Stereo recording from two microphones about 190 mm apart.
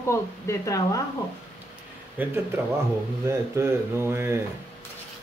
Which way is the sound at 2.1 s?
10° right (ahead or behind).